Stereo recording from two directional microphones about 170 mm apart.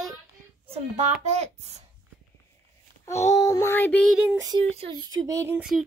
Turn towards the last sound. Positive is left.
turn(degrees=-15)  # may be behind; listen again after turning